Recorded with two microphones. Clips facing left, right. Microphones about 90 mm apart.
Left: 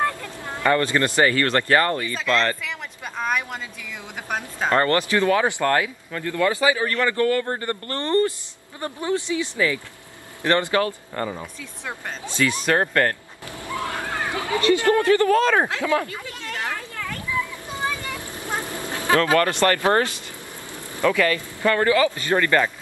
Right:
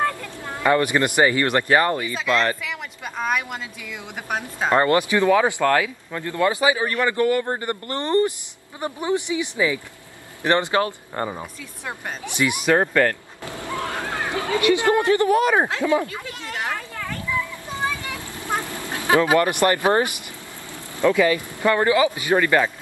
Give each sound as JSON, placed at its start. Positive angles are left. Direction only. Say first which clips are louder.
{"t": 0.6, "sound": "speech", "louder": "right 1 dB", "side_deg": -15}
{"t": 4.3, "sound": "speech", "louder": "right 1 dB", "side_deg": -15}
{"t": 5.6, "sound": "speech", "louder": "right 2 dB", "side_deg": -5}
{"t": 6.1, "sound": "a man's voice", "louder": "right 1 dB", "side_deg": -25}
{"t": 12.6, "sound": "speech", "louder": "right 3 dB", "side_deg": -5}
{"t": 13.7, "sound": "speech", "louder": "left 1 dB", "side_deg": -20}
{"t": 16.6, "sound": "children playing", "louder": "right 2 dB", "side_deg": -20}
{"t": 18.5, "sound": "duck", "louder": "right 2 dB", "side_deg": 20}
{"t": 18.9, "sound": "speech", "louder": "right 1 dB", "side_deg": -20}